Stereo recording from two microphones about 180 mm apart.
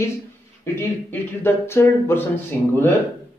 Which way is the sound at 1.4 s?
15° left (ahead or behind).